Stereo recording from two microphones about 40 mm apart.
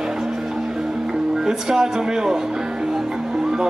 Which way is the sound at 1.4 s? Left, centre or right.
Centre.